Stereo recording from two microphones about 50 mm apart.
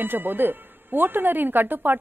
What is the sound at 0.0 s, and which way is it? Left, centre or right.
Speech, right.